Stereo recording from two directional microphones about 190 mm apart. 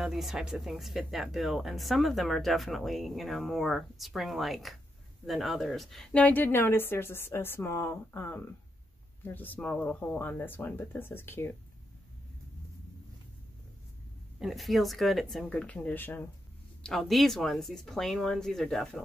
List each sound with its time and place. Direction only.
0.0 s a woman's voice: centre (ahead or behind)
14.4 s speech: centre (ahead or behind)